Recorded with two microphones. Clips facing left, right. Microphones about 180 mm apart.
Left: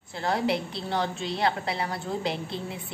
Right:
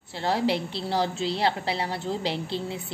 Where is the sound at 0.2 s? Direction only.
30° right (ahead or behind).